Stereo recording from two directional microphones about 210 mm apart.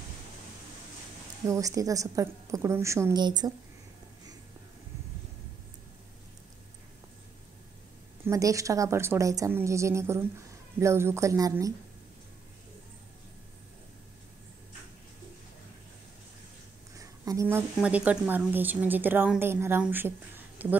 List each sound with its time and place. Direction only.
1.5 s a woman's voice: 15° right (ahead or behind)
8.3 s a woman's voice: 15° right (ahead or behind)
16.9 s a woman's voice: 15° right (ahead or behind)